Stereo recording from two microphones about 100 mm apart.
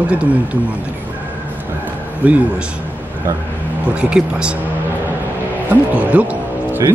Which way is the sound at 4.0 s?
10° right (ahead or behind).